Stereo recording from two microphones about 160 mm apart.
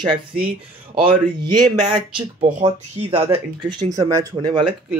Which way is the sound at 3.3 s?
25° right (ahead or behind).